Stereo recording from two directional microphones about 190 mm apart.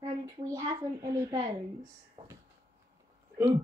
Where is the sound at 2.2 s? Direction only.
30° right (ahead or behind).